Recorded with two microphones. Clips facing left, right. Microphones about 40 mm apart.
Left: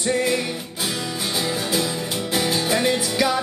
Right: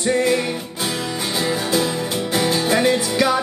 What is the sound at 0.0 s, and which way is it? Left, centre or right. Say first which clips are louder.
Music: right 3 dB; centre.